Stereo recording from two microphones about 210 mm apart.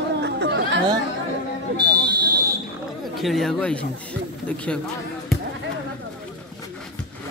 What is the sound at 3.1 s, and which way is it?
Speech, centre (ahead or behind).